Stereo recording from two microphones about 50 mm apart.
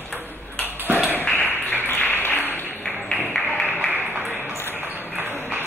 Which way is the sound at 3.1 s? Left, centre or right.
Centre.